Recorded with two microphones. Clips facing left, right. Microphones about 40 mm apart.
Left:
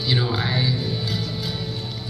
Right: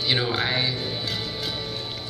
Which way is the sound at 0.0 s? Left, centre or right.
Right.